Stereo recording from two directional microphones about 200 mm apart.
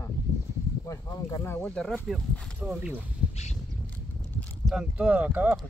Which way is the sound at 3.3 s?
35° left (ahead or behind).